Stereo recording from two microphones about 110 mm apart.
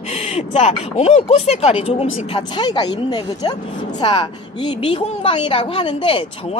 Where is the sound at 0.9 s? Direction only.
90° left.